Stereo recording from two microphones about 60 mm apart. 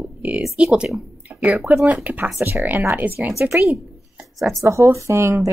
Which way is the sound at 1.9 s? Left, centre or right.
Right.